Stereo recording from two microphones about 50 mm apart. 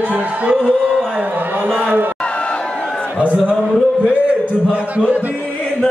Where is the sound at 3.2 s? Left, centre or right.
Right.